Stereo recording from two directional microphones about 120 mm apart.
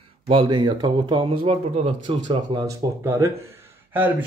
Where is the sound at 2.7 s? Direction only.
25° right (ahead or behind).